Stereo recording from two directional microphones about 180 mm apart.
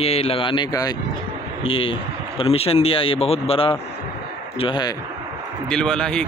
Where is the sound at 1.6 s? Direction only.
30° left (ahead or behind).